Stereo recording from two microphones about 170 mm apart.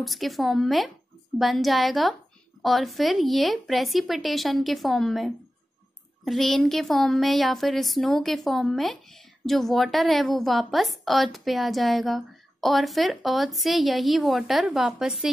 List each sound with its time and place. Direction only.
0.0 s speech: centre (ahead or behind)